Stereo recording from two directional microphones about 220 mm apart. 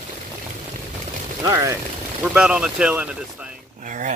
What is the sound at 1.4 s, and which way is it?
Speech, 15° right (ahead or behind).